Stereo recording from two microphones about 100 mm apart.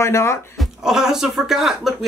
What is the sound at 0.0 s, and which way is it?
Speech, 25° left (ahead or behind).